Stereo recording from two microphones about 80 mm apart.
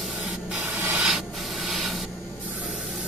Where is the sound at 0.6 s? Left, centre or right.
Right.